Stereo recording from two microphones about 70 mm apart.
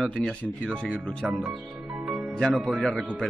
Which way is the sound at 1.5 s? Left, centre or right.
Centre.